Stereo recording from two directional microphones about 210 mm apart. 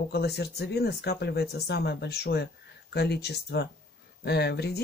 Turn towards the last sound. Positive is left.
turn(degrees=50)  # may be behind; listen again after turning